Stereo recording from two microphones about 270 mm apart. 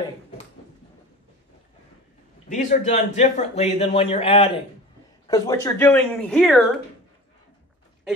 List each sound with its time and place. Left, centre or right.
2.5 s speech: left; by 6.8 s centre